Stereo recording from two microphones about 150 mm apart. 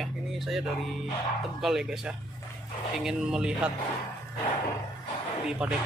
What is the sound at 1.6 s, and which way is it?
Speech, 5° right (ahead or behind).